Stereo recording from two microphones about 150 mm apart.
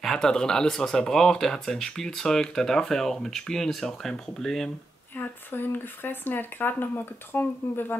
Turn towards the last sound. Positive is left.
turn(degrees=15)  # may be behind; listen again after turning